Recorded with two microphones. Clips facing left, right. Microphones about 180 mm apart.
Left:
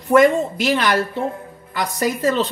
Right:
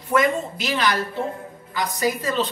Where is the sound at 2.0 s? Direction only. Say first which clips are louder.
Left 4 dB; 45° left (ahead or behind).